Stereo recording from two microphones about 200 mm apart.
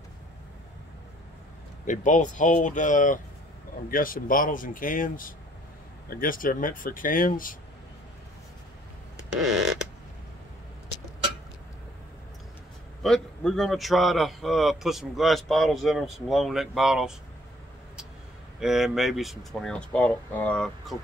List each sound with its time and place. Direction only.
1.9 s speech: 40° left (ahead or behind)
9.3 s a sound: centre (ahead or behind)
13.0 s a man's voice: 5° left (ahead or behind)
18.6 s a man's voice: centre (ahead or behind)